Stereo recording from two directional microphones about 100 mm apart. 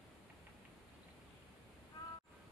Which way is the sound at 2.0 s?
45° left (ahead or behind).